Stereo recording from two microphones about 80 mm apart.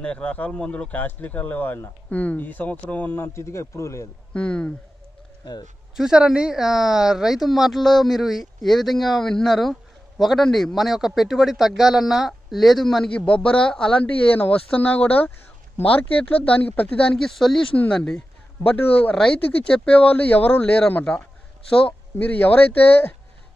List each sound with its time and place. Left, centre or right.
0.0 s speech: centre; by 4.1 s left
4.3 s speech: centre
5.4 s speech: left
5.9 s speech: centre; by 23.1 s left